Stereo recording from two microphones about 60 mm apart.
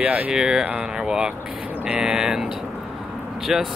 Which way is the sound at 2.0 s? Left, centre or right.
Centre.